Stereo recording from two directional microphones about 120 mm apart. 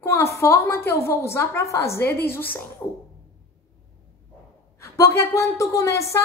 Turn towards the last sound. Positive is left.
turn(degrees=25)  # may be behind; listen again after turning